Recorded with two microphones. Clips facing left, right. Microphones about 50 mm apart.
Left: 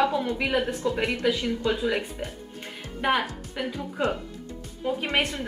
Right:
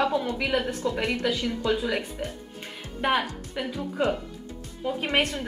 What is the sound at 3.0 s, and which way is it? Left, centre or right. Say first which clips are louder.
Speech: even; centre.